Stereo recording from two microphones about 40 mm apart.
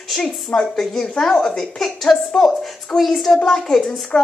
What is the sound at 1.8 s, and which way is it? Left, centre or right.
A woman's voice, centre.